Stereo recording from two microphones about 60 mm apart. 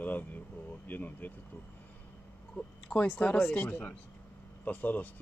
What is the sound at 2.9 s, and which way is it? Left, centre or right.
Speech, centre.